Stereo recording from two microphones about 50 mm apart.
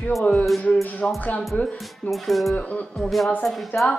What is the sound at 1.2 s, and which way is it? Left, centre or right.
Speech, left.